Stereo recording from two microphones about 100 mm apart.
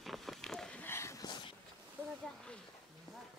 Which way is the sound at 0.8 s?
25° left (ahead or behind).